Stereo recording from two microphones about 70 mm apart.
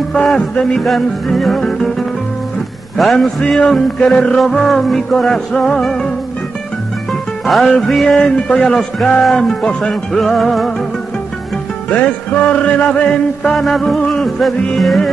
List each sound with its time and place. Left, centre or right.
0.1 s music: centre
11.9 s music: centre
13.6 s music: centre